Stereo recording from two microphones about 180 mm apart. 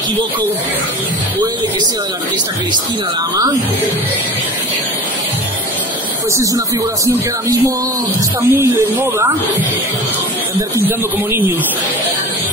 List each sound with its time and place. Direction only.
6.3 s speech: 20° right (ahead or behind)
8.4 s speech: 15° right (ahead or behind)